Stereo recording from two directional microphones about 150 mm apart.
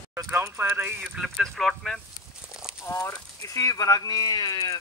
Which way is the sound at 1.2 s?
Centre (ahead or behind).